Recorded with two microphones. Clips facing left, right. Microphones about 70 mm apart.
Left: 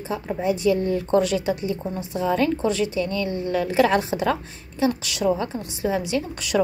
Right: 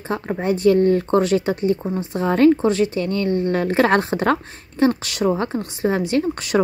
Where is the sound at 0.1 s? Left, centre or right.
Right.